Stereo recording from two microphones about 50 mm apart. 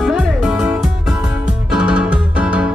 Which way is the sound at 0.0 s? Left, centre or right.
Centre.